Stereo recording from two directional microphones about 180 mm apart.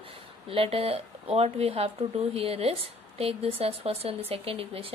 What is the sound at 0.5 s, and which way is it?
Speech, 30° right (ahead or behind).